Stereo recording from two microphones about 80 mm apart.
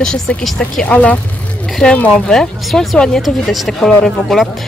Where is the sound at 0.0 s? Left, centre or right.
Centre.